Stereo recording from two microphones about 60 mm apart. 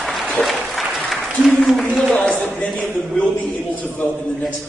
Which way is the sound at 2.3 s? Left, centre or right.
Left.